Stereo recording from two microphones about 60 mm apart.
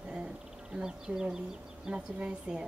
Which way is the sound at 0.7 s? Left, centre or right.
Centre.